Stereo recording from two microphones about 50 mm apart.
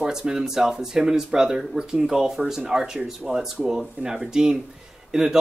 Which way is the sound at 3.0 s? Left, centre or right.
Right.